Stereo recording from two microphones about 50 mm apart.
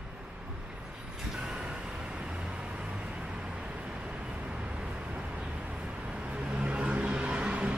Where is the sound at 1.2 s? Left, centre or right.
Centre.